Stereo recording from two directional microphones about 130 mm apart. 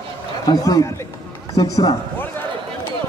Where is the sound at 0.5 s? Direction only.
30° left (ahead or behind).